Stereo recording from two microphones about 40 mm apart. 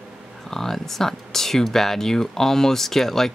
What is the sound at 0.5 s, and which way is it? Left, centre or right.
Speech, centre.